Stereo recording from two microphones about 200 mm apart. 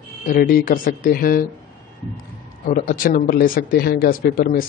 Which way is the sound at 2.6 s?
45° left (ahead or behind).